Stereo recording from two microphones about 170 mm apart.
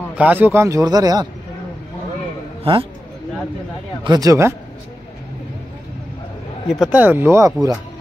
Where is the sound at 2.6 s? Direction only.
30° right (ahead or behind).